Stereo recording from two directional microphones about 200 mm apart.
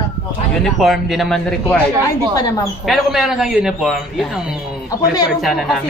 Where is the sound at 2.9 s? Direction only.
Centre (ahead or behind).